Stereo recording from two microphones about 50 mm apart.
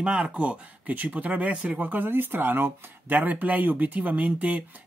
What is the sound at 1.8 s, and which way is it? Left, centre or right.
Speech, right.